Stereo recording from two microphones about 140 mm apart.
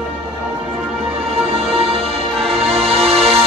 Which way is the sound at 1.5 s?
40° right (ahead or behind).